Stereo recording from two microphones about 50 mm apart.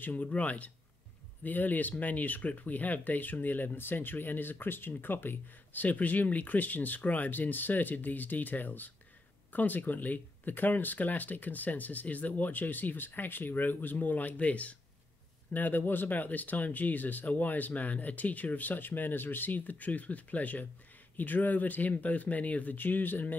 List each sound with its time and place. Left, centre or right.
0.0 s speech: left
15.5 s speech: left